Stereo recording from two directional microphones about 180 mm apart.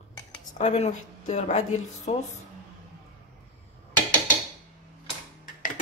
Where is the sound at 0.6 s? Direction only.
40° left (ahead or behind).